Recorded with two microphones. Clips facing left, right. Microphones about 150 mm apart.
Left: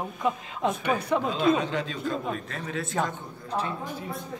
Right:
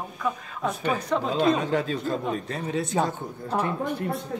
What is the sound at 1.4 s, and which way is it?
Speech, 40° right (ahead or behind).